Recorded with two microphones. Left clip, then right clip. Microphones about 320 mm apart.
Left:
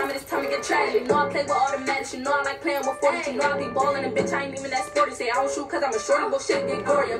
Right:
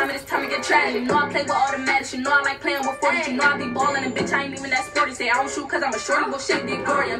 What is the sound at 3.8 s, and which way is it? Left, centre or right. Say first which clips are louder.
A woman's voice: right 1 dB; centre.